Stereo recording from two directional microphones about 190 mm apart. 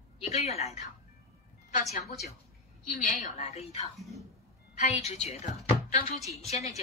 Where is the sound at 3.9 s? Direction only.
Centre (ahead or behind).